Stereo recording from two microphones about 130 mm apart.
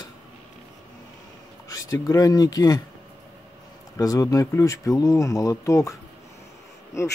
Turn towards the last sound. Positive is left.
turn(degrees=20)  # may be behind; listen again after turning